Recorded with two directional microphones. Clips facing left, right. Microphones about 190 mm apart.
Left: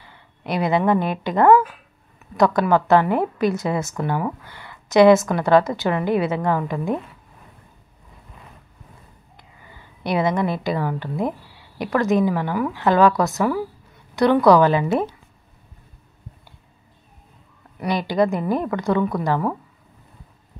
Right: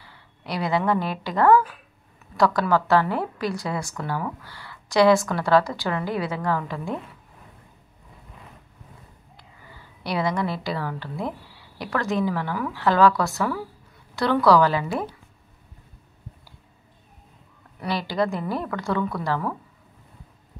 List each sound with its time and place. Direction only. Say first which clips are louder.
0.5 s a woman's voice: left 4 dB; 20° left (ahead or behind)
10.0 s a woman's voice: left 4 dB; 20° left (ahead or behind)
17.7 s a woman's voice: left 5 dB; 15° left (ahead or behind)